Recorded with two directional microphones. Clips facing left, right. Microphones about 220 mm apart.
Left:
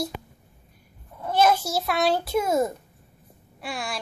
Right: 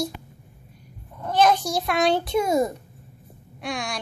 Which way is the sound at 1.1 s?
10° left (ahead or behind).